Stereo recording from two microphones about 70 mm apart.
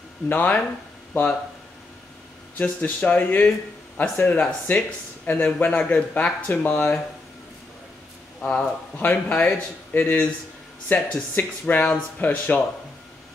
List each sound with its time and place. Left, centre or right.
0.3 s speech: left
2.6 s speech: centre
8.5 s speech: left